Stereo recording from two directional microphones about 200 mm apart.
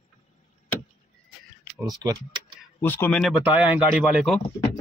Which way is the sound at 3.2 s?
Centre (ahead or behind).